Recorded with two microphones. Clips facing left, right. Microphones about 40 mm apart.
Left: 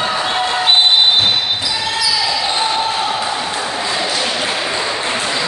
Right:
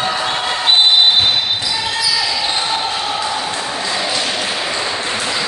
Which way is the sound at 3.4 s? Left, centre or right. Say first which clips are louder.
Left 1 dB; centre.